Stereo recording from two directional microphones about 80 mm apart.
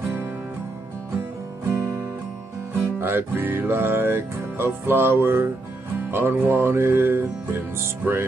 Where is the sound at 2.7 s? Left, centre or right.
Right.